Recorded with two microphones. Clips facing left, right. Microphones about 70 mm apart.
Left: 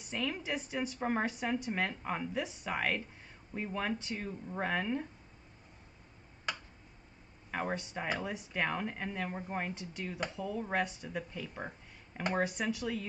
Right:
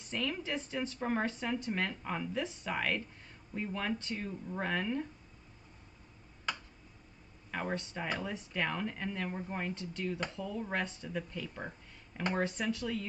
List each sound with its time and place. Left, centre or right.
0.0 s speech: centre
7.5 s speech: centre